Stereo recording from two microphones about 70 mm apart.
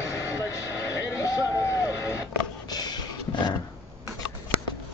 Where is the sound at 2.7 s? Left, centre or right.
Left.